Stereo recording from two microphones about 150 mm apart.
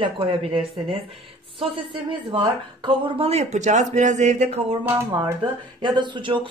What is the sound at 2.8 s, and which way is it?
Speech, 35° right (ahead or behind).